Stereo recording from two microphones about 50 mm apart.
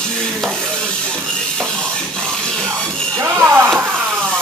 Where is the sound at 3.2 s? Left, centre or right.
Right.